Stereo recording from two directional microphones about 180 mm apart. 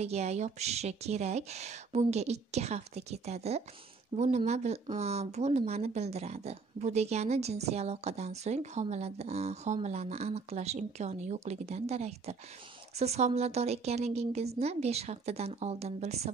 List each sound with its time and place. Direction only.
0.0 s speech: 35° right (ahead or behind)